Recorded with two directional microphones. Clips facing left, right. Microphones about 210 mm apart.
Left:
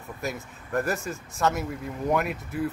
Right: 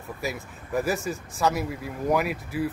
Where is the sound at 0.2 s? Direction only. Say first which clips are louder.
Even; centre (ahead or behind).